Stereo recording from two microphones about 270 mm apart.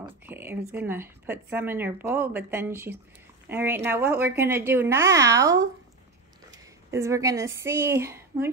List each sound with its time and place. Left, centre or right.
0.3 s speech: centre
6.9 s speech: centre